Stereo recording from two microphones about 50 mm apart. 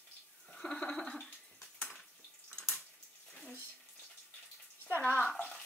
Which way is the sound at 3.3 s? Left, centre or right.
Centre.